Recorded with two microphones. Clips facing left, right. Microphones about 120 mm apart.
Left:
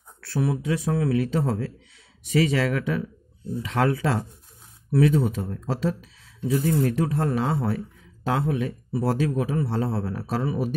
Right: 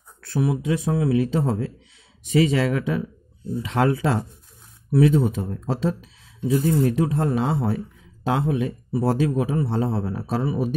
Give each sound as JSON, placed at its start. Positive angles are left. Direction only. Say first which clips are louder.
{"t": 0.2, "sound": "speech", "louder": "right 2 dB", "side_deg": -15}